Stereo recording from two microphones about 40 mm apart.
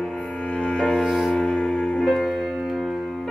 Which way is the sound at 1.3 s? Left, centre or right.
Centre.